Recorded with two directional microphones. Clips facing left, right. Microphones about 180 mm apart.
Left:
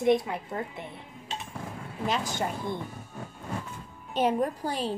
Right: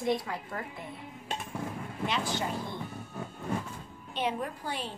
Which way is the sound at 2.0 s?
45° left (ahead or behind).